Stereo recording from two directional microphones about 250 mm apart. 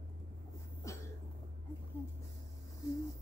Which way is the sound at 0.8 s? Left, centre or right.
Centre.